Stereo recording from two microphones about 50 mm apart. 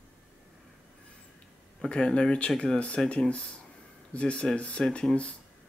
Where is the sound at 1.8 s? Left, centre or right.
Centre.